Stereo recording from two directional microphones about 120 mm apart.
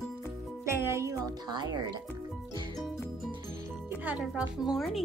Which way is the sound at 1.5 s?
35° right (ahead or behind).